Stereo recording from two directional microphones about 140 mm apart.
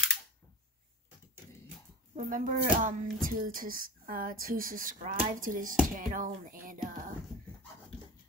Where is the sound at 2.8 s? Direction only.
85° right.